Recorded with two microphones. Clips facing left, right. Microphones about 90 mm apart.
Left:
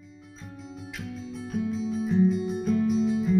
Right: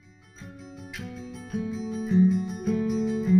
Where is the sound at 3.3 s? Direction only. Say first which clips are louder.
Right 4 dB; centre (ahead or behind).